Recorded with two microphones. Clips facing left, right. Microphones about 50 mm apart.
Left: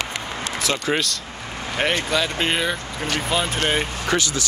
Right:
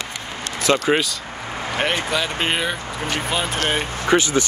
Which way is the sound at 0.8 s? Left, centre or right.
Centre.